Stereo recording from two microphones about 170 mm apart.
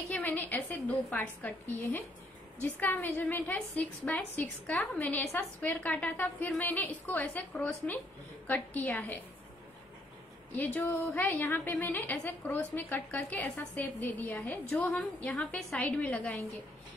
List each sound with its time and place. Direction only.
0.1 s a woman's voice: 10° left (ahead or behind)
10.5 s a woman's voice: 10° left (ahead or behind)